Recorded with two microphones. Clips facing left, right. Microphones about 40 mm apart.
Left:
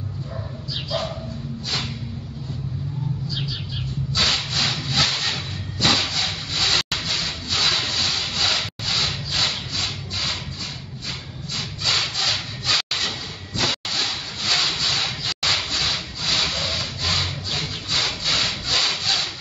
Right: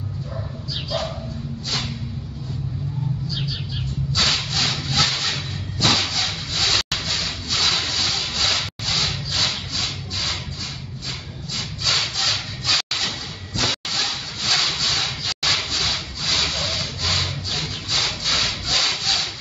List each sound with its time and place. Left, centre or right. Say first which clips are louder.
0.8 s dog: even; centre
3.3 s bird: right 1 dB; centre
4.1 s a sound: even; centre
11.8 s rub: even; centre